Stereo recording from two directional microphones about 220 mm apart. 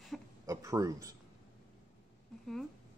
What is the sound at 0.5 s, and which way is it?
Speech, 15° right (ahead or behind).